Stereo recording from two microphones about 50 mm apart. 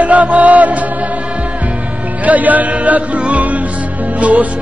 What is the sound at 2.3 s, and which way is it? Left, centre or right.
Speech, right.